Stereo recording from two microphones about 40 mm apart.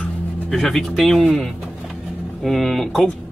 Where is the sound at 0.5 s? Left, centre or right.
Centre.